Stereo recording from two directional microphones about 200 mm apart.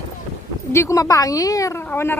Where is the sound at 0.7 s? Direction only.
15° left (ahead or behind).